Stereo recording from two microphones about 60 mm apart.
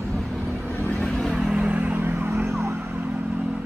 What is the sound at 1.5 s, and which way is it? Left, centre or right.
Vehicle, right.